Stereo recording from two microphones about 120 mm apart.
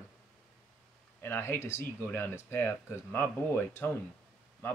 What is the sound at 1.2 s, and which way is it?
Speech, 20° left (ahead or behind).